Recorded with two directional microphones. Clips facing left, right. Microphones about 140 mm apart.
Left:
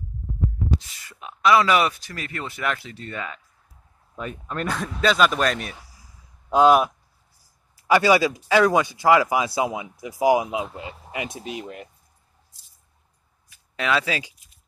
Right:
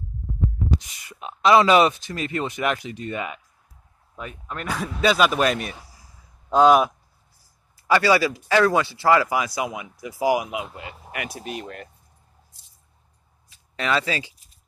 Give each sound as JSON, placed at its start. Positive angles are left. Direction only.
{"t": 0.7, "sound": "a man's voice", "side_deg": -15}
{"t": 13.7, "sound": "speech", "side_deg": 5}